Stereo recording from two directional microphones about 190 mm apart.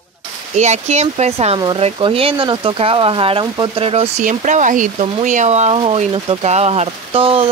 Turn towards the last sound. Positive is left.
turn(degrees=-30)  # may be behind; listen again after turning